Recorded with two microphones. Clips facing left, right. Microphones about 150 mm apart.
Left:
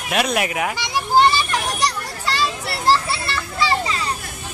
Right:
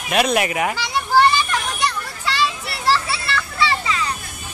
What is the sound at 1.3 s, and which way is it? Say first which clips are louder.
Children playing: even; 35° left (ahead or behind).